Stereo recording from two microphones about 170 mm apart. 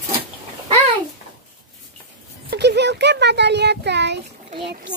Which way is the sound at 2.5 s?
80° right.